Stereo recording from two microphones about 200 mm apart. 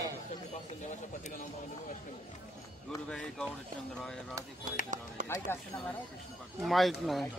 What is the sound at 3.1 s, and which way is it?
Speech, 5° left (ahead or behind).